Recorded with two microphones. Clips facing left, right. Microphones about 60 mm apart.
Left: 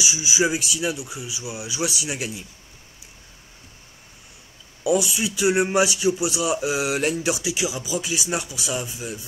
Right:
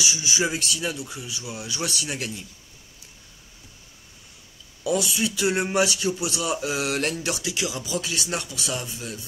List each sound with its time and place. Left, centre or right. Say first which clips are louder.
0.0 s speech: left 3 dB; centre
4.8 s speech: left 3 dB; centre